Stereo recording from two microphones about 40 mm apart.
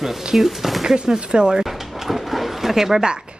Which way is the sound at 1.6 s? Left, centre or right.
Centre.